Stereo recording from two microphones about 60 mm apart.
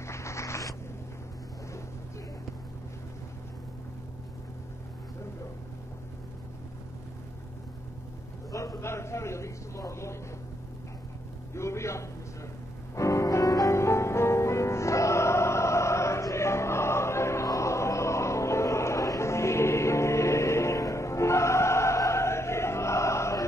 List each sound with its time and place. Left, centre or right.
0.0 s a sound: left
8.5 s a man's voice: left
11.5 s a man's voice: left
12.9 s music: left